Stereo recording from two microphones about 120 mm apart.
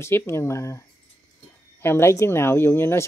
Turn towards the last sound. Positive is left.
turn(degrees=20)  # may be behind; listen again after turning